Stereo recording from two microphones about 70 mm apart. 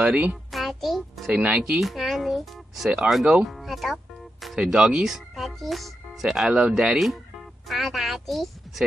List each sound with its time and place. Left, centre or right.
0.0 s a child's voice: centre
0.5 s music: centre
1.3 s speech: centre
1.6 s music: centre
2.9 s speech: centre
3.4 s music: centre
4.6 s speech: centre